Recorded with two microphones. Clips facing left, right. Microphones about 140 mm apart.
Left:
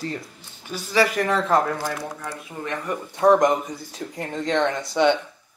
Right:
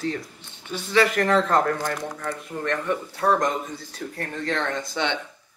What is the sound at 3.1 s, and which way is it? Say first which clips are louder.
Speech: left 7 dB; 20° left (ahead or behind).